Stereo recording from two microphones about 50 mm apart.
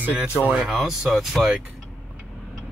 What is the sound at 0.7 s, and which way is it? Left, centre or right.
Speech, centre.